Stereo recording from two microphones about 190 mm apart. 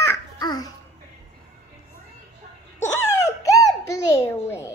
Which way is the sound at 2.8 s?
15° left (ahead or behind).